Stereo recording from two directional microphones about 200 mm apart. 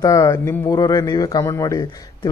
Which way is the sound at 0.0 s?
15° left (ahead or behind).